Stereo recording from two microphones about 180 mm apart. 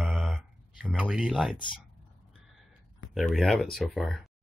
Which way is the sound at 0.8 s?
5° right (ahead or behind).